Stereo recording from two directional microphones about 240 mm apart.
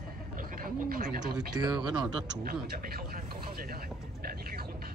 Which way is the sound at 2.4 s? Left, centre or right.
Right.